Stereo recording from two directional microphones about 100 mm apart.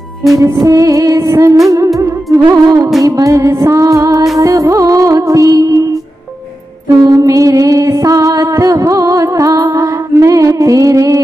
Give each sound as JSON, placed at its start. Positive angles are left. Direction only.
{"t": 0.4, "sound": "music", "side_deg": -35}
{"t": 6.9, "sound": "music", "side_deg": -35}